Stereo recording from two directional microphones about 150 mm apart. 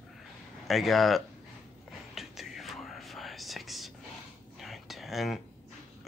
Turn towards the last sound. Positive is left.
turn(degrees=0)  # may be behind; listen again after turning